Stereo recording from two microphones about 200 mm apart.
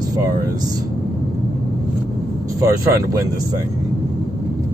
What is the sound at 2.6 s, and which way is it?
Speech, 15° right (ahead or behind).